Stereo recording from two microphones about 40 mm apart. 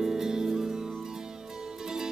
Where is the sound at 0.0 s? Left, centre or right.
Centre.